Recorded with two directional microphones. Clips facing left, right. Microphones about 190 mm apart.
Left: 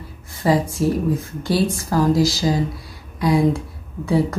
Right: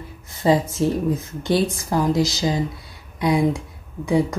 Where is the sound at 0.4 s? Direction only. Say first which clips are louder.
Even; 25° right (ahead or behind).